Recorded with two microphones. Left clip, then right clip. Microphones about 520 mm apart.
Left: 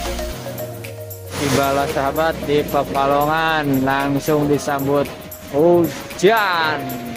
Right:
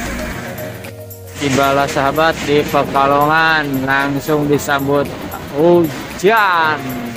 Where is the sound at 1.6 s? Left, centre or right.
Left.